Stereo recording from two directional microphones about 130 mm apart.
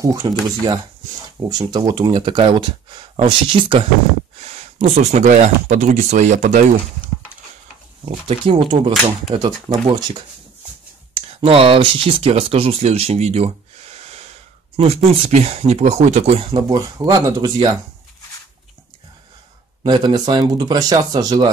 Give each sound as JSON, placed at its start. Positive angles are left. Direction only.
{"t": 0.0, "sound": "speech", "side_deg": -25}
{"t": 4.4, "sound": "speech", "side_deg": -55}
{"t": 8.0, "sound": "speech", "side_deg": -45}
{"t": 9.7, "sound": "speech", "side_deg": -30}
{"t": 11.1, "sound": "speech", "side_deg": -45}
{"t": 19.8, "sound": "speech", "side_deg": -35}